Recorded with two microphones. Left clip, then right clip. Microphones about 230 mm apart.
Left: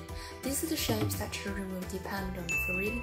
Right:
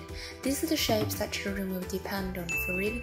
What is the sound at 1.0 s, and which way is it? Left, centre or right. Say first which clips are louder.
Speech: right 4 dB; centre.